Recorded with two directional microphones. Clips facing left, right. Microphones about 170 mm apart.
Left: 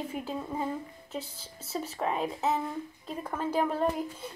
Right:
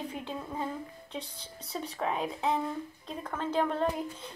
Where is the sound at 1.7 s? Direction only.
5° left (ahead or behind).